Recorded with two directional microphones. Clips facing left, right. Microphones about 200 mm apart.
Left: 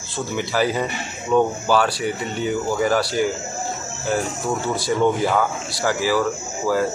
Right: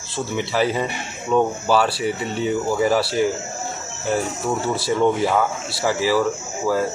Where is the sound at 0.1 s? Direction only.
Centre (ahead or behind).